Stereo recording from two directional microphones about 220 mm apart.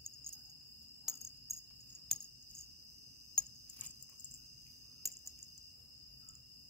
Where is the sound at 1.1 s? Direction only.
Centre (ahead or behind).